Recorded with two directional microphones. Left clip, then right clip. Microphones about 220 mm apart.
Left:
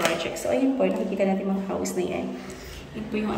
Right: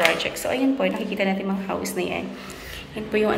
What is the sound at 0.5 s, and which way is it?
A woman's voice, 40° right (ahead or behind).